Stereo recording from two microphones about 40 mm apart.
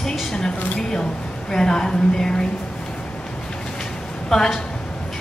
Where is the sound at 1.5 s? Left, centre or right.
Centre.